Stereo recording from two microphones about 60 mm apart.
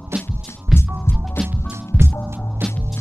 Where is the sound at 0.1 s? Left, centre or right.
Right.